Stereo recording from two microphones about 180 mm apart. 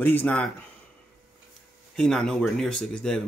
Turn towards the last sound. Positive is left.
turn(degrees=5)  # may be behind; listen again after turning